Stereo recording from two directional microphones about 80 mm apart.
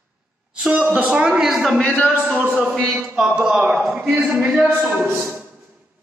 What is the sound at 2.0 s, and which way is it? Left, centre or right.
A woman's voice, centre.